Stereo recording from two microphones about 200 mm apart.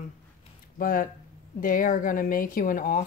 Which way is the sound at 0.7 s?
45° left (ahead or behind).